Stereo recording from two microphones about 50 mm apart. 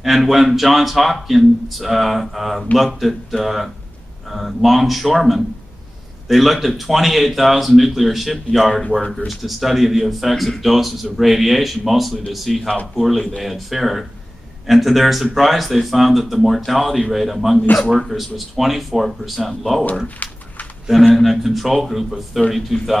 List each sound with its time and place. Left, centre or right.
0.0 s speech: centre
20.2 s a sound: left
21.1 s speech: centre